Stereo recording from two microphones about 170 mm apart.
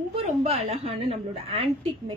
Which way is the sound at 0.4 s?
40° right (ahead or behind).